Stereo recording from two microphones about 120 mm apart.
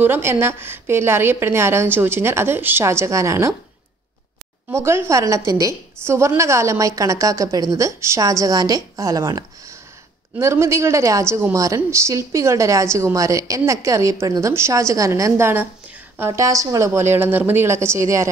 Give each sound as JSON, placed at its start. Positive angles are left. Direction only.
{"t": 0.0, "sound": "a woman's voice", "side_deg": -20}
{"t": 4.6, "sound": "a woman's voice", "side_deg": -20}